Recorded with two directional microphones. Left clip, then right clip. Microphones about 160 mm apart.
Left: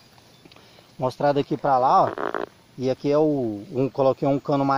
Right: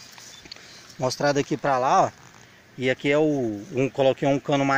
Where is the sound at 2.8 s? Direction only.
20° left (ahead or behind).